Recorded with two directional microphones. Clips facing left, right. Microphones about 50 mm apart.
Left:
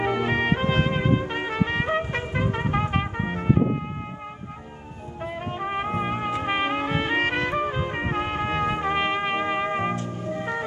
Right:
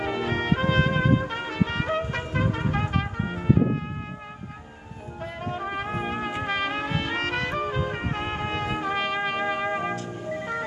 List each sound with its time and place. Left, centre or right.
0.0 s trumpet: left
5.2 s music: left
5.9 s trumpet: centre
6.4 s trumpet: left
8.5 s music: left